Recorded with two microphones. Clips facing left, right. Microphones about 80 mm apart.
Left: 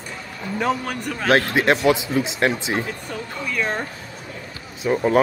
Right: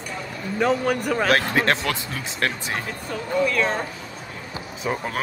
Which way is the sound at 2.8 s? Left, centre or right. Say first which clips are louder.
Right 1 dB; centre.